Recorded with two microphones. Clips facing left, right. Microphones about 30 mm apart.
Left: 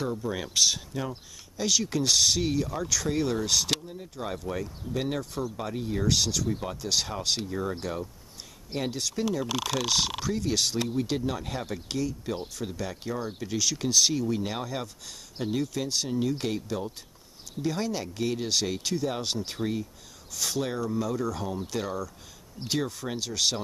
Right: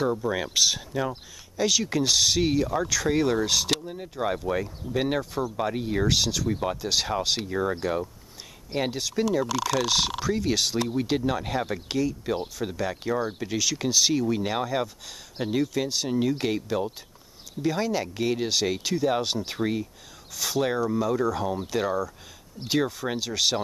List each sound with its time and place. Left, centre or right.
0.2 s speech: centre
3.8 s speech: right
5.2 s speech: centre
5.6 s speech: right
6.0 s speech: centre
8.9 s speech: centre
11.1 s speech: centre
17.6 s speech: centre
19.6 s speech: right
20.3 s speech: centre
20.6 s speech: centre